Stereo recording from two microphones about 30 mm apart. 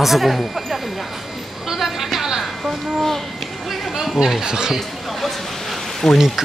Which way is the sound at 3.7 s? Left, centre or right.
Centre.